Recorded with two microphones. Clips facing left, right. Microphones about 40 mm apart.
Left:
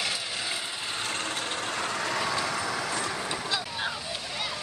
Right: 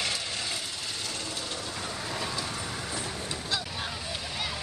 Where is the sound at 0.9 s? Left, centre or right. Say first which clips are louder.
Left 4 dB; left.